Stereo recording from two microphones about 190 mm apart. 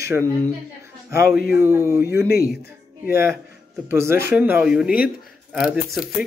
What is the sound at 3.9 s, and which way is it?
Speech, 15° right (ahead or behind).